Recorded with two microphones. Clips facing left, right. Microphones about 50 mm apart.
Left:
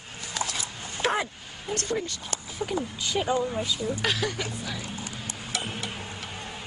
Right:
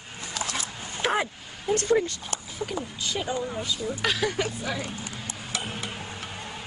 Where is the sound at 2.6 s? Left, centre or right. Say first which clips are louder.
Left 3 dB; centre.